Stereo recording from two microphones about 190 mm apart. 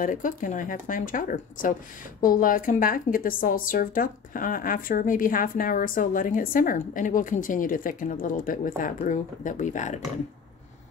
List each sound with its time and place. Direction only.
0.0 s a woman's voice: 45° left (ahead or behind)